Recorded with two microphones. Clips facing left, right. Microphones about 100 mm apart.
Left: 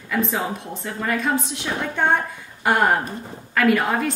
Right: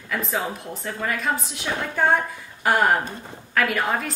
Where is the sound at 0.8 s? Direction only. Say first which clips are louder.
Left 2 dB; centre (ahead or behind).